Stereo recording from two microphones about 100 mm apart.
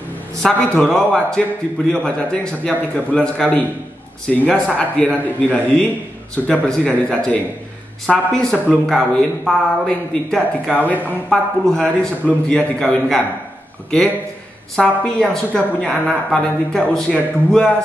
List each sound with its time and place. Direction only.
0.4 s a woman's voice: 5° left (ahead or behind)
8.1 s a woman's voice: 5° left (ahead or behind)
11.2 s a man's voice: 5° left (ahead or behind)